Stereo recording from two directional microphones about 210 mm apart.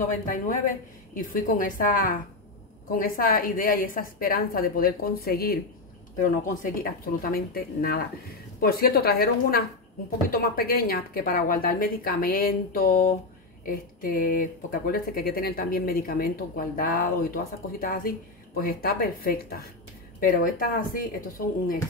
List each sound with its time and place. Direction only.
0.3 s a woman's voice: 40° left (ahead or behind)